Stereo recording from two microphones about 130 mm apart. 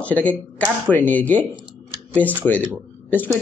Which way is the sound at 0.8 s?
15° left (ahead or behind).